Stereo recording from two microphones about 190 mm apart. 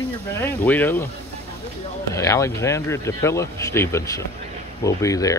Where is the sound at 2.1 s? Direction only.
15° left (ahead or behind).